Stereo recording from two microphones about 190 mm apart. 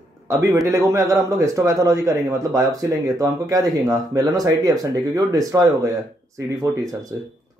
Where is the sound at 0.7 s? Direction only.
15° right (ahead or behind).